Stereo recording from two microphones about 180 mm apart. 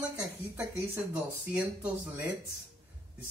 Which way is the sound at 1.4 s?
10° right (ahead or behind).